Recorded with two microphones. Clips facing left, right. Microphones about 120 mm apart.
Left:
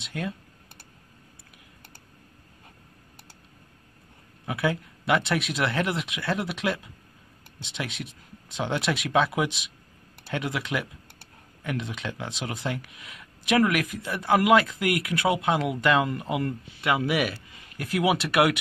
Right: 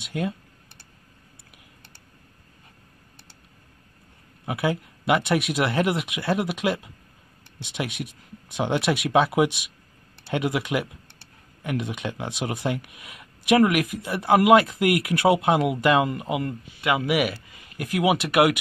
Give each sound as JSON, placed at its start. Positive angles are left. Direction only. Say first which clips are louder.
{"t": 0.0, "sound": "speech", "louder": "right 5 dB", "side_deg": -15}
{"t": 4.5, "sound": "speech", "louder": "right 2 dB", "side_deg": -15}